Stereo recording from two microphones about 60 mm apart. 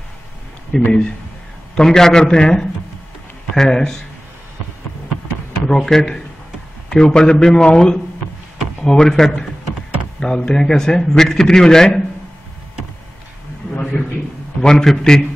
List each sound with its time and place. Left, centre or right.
0.7 s a man's voice: centre
5.7 s a man's voice: centre
13.9 s a sound: left
14.6 s a man's voice: centre